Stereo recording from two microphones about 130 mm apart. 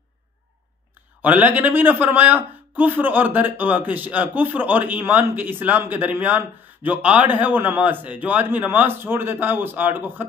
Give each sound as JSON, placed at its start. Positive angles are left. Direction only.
{"t": 1.2, "sound": "a man's voice", "side_deg": -15}